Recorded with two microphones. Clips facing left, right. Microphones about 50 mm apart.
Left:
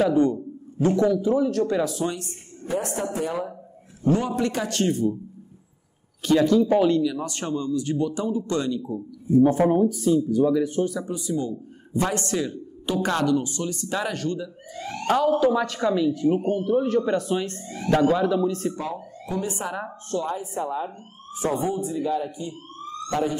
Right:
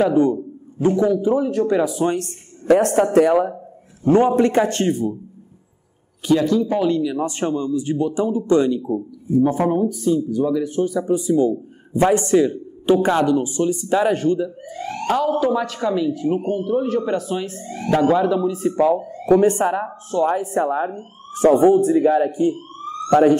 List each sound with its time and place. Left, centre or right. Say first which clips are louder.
0.0 s a man's voice: right 4 dB; centre
2.1 s speech: right 10 dB; right
4.0 s a man's voice: right 8 dB; right
6.2 s speech: right 1 dB; centre
7.0 s a man's voice: right 4 dB; centre
9.4 s speech: even; centre
11.1 s a man's voice: right 10 dB; right
15.0 s speech: right 1 dB; centre
18.8 s a man's voice: right 14 dB; right
19.2 s speech: right 15 dB; right
20.2 s speech: right 9 dB; right